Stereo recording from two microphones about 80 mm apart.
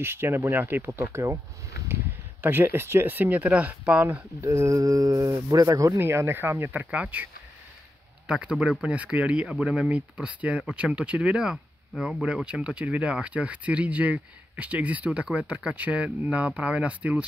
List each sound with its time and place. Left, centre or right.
0.0 s speech: right
2.4 s speech: right
4.5 s speech: right
5.9 s speech: right; by 7.2 s centre
8.3 s speech: centre